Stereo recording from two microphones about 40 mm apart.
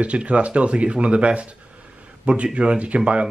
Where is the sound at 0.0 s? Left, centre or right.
Right.